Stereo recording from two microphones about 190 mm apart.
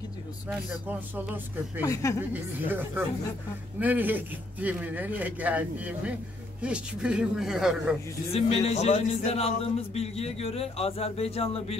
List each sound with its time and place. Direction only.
0.5 s a man's voice: 5° right (ahead or behind)
1.9 s speech: 15° left (ahead or behind)
2.3 s a man's voice: 10° right (ahead or behind)
8.3 s a man's voice: 30° left (ahead or behind)